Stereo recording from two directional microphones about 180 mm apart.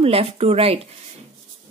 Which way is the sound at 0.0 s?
30° right (ahead or behind).